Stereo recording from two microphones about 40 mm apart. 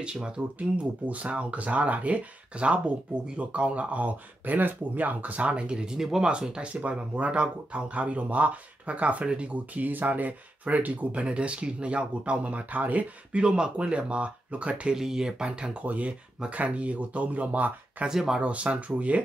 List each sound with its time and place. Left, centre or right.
0.0 s speech: right
0.6 s speech: right
5.9 s speech: centre
6.2 s speech: right
6.7 s speech: right
9.8 s speech: right
11.2 s speech: right
13.4 s speech: right
15.0 s speech: centre
15.8 s speech: right
18.0 s speech: centre
18.4 s speech: right